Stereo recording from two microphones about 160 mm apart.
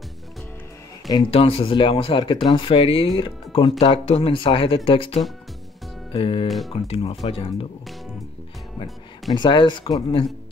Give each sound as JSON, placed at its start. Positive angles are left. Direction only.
{"t": 1.1, "sound": "speech", "side_deg": 35}
{"t": 6.4, "sound": "speech", "side_deg": 0}
{"t": 6.7, "sound": "speech", "side_deg": 35}
{"t": 9.3, "sound": "speech", "side_deg": 30}